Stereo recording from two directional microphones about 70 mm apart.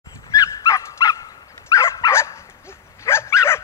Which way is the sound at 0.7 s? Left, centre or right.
Left.